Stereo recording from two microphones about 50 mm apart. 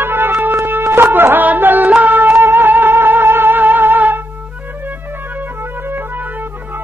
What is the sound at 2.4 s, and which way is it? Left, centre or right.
Music, right.